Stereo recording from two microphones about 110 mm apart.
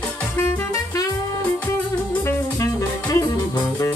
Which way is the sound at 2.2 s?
30° left (ahead or behind).